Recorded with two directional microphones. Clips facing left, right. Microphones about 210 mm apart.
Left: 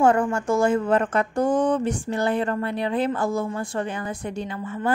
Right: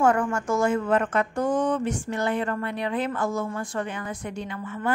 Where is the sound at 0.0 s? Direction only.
30° left (ahead or behind).